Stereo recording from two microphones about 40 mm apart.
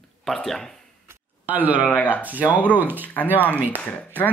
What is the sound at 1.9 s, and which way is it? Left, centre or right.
Speech, left.